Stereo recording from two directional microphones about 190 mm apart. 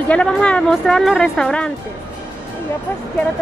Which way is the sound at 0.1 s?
5° left (ahead or behind).